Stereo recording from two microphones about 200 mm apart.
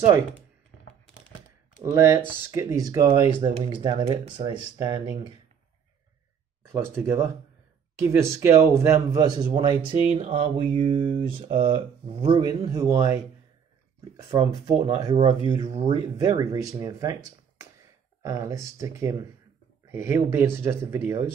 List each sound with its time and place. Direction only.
1.9 s a man's voice: 15° right (ahead or behind)
6.6 s a man's voice: 10° right (ahead or behind); by 11.5 s 35° right (ahead or behind)
12.2 s speech: 20° right (ahead or behind)
14.3 s a man's voice: 25° right (ahead or behind)